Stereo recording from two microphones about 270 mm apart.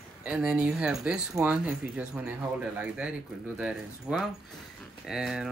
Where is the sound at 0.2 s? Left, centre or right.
Centre.